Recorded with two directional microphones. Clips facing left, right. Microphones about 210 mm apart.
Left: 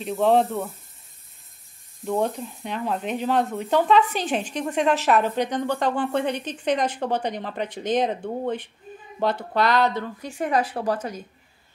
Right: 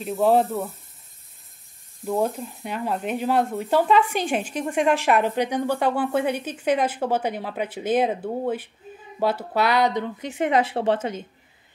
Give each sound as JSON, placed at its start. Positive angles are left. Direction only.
{"t": 0.0, "sound": "speech", "side_deg": -5}
{"t": 2.0, "sound": "speech", "side_deg": -5}